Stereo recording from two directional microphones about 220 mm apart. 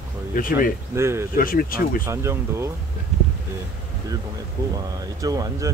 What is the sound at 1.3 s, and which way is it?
Speech, 40° left (ahead or behind).